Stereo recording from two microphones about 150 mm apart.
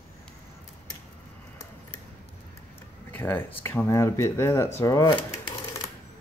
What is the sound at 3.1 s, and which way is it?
Speech, 15° left (ahead or behind).